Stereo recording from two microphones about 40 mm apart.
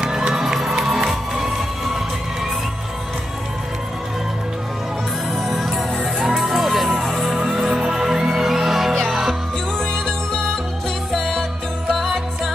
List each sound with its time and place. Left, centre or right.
0.0 s music: right
0.3 s music: centre
5.4 s music: centre
10.0 s music: centre